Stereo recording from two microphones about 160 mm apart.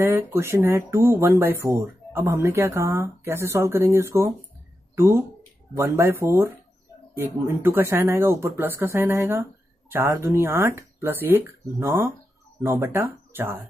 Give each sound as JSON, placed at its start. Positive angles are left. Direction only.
{"t": 0.0, "sound": "speech", "side_deg": -15}